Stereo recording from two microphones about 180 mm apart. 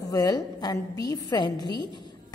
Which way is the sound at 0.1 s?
20° left (ahead or behind).